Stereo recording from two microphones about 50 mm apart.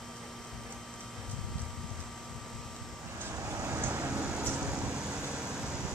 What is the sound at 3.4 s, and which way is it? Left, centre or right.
Vehicle, right.